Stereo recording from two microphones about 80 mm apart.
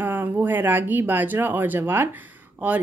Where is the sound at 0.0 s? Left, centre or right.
Right.